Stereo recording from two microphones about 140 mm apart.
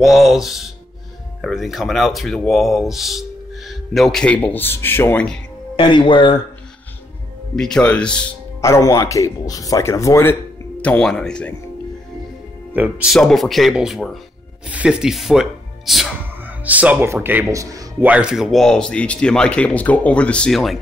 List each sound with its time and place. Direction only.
0.0 s speech: centre (ahead or behind)
5.8 s speech: 35° left (ahead or behind)
7.5 s speech: 5° left (ahead or behind)
8.5 s speech: 20° left (ahead or behind)
10.8 s speech: 10° left (ahead or behind)
12.7 s speech: 10° right (ahead or behind)
18.0 s speech: 10° right (ahead or behind)